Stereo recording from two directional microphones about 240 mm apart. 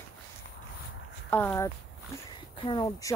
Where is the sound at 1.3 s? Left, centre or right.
Centre.